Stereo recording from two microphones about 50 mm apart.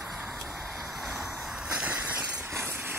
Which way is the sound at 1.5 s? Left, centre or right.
Right.